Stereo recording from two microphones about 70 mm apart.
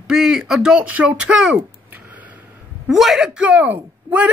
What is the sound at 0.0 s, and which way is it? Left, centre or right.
Speech, centre.